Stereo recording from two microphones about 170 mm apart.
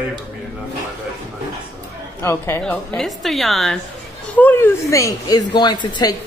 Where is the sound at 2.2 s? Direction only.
15° left (ahead or behind).